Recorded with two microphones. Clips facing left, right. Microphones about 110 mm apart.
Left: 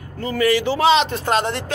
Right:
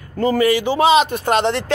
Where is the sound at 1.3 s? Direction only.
75° right (ahead or behind).